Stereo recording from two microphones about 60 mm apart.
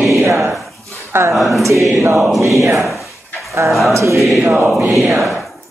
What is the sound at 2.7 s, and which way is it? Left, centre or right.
Drawer open or close, centre.